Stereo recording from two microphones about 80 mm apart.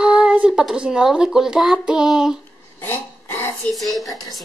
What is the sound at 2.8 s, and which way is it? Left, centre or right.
Dog, left.